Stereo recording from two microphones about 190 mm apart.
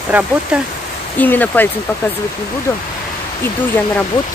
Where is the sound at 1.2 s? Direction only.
10° left (ahead or behind).